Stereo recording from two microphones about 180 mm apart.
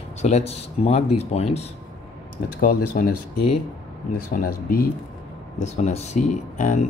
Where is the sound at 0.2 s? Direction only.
35° left (ahead or behind).